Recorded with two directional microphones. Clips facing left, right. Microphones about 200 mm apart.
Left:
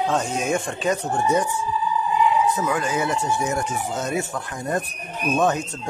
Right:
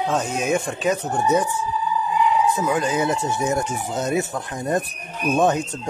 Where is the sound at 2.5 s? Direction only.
20° right (ahead or behind).